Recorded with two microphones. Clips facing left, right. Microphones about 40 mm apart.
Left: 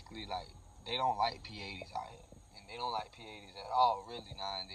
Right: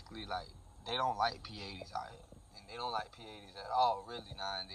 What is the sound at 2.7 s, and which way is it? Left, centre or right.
Speech, centre.